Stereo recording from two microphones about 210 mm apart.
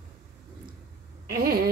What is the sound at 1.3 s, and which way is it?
Speech, 45° right (ahead or behind).